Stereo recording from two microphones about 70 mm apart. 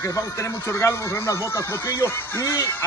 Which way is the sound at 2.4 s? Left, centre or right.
Left.